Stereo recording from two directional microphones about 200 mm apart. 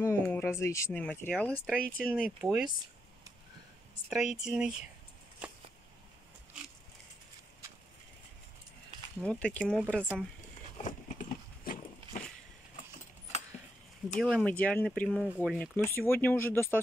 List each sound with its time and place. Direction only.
0.0 s speech: 10° left (ahead or behind)
4.1 s speech: 5° right (ahead or behind)
9.2 s speech: 5° left (ahead or behind)
10.8 s horse: 40° left (ahead or behind)
14.1 s speech: 5° left (ahead or behind)